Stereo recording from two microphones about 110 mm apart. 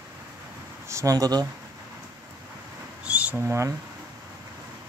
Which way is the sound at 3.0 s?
10° right (ahead or behind).